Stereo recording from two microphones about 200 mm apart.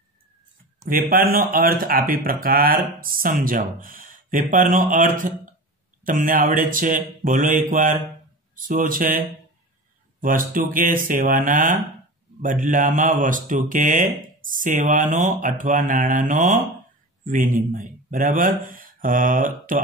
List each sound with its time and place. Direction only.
0.8 s speech: 45° right (ahead or behind)
10.2 s speech: 45° right (ahead or behind)